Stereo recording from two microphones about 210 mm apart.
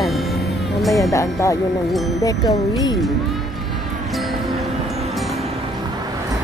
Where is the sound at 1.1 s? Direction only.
15° left (ahead or behind).